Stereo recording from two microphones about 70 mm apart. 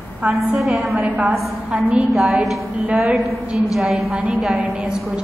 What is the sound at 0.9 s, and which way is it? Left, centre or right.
A woman's voice, right.